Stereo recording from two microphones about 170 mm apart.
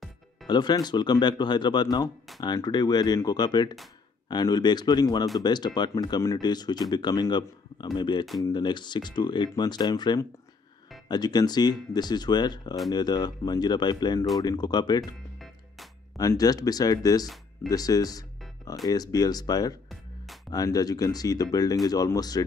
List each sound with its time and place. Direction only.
0.5 s speech: 25° left (ahead or behind)
16.2 s speech: 20° left (ahead or behind)